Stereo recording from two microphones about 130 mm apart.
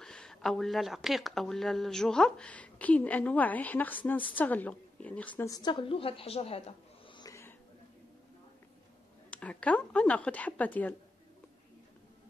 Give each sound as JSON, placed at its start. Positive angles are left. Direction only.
{"t": 0.0, "sound": "a woman's voice", "side_deg": 5}
{"t": 5.5, "sound": "a woman's voice", "side_deg": 35}
{"t": 7.2, "sound": "a sound", "side_deg": 25}
{"t": 9.3, "sound": "a woman's voice", "side_deg": 10}